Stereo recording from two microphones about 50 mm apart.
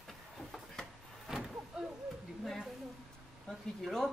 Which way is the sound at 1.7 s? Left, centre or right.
Centre.